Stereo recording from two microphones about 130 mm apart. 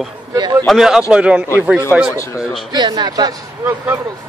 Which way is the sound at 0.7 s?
5° right (ahead or behind).